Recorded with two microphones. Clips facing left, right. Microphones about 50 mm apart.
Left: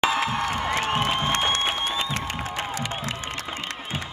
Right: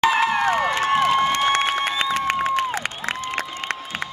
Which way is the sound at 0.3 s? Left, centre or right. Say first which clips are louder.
Right 6 dB; right.